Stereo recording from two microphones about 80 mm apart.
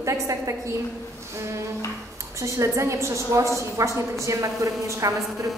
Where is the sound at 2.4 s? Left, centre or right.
Right.